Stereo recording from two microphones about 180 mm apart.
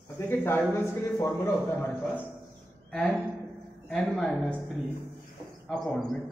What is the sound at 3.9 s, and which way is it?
Speech, centre (ahead or behind).